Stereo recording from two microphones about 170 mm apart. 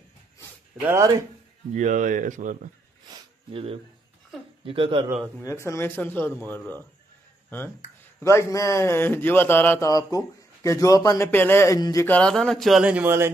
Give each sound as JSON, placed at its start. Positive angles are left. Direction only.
{"t": 0.8, "sound": "speech", "side_deg": -20}
{"t": 1.7, "sound": "speech", "side_deg": -45}
{"t": 3.1, "sound": "a sound", "side_deg": -35}
{"t": 4.6, "sound": "a man's voice", "side_deg": -30}
{"t": 5.4, "sound": "a man's voice", "side_deg": 15}
{"t": 12.1, "sound": "speech", "side_deg": 5}